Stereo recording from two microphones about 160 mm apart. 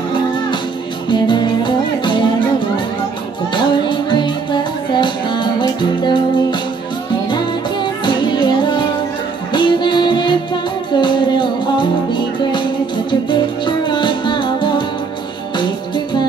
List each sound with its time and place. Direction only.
1.1 s music: 30° left (ahead or behind)
3.5 s music: 30° left (ahead or behind)